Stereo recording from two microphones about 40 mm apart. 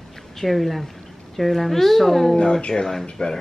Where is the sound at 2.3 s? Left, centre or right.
Centre.